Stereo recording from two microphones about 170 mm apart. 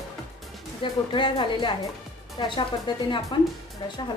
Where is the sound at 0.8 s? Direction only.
30° left (ahead or behind).